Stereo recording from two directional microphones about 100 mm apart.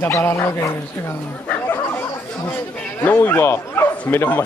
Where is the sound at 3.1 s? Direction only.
20° left (ahead or behind).